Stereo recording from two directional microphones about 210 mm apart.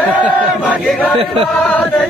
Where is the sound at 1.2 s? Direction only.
25° right (ahead or behind).